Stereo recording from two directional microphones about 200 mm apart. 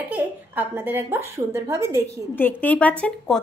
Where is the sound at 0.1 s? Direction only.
10° right (ahead or behind).